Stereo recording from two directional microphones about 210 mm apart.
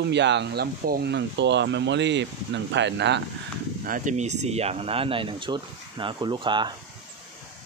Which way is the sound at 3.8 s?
40° right (ahead or behind).